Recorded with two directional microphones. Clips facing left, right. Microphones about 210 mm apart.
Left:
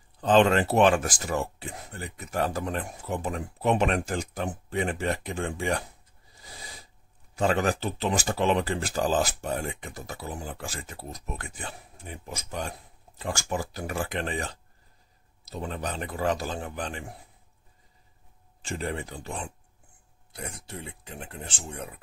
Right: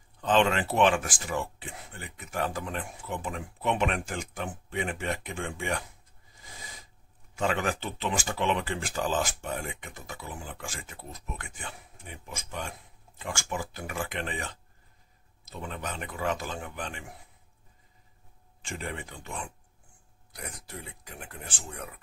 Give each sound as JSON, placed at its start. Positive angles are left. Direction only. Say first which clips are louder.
{"t": 0.2, "sound": "speech", "louder": "left 4 dB", "side_deg": 40}
{"t": 7.3, "sound": "speech", "louder": "left 4 dB", "side_deg": 35}
{"t": 18.6, "sound": "speech", "louder": "left 5 dB", "side_deg": 35}